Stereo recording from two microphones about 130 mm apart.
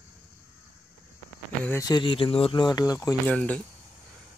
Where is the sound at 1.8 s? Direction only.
35° left (ahead or behind).